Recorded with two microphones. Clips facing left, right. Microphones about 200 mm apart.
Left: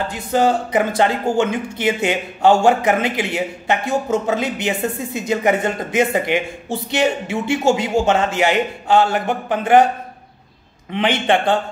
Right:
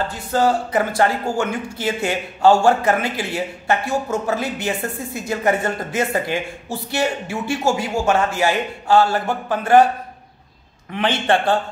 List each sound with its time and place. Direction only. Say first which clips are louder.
0.1 s speech: left 3 dB; 20° left (ahead or behind)
10.9 s a man's voice: left 2 dB; 15° left (ahead or behind)